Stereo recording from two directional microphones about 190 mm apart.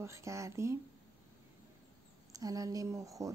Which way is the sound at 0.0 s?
15° right (ahead or behind).